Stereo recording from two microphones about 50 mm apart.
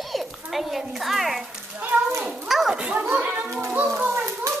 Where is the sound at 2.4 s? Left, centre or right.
Centre.